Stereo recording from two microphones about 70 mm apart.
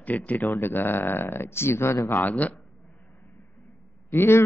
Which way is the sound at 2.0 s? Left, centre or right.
Left.